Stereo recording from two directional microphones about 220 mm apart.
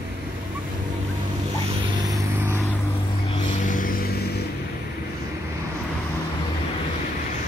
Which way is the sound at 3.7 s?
40° left (ahead or behind).